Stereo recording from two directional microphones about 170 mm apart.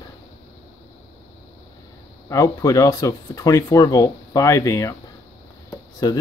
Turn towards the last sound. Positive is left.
turn(degrees=20)  # may be behind; listen again after turning